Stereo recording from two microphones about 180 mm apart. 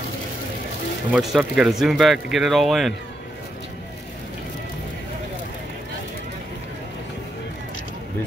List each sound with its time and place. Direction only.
1.1 s speech: 5° right (ahead or behind)